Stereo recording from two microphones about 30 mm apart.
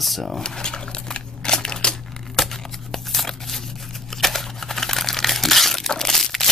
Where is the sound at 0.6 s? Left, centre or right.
Left.